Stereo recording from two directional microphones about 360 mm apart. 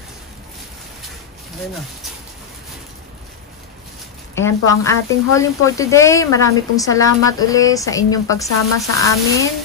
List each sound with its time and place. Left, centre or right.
4.4 s speech: centre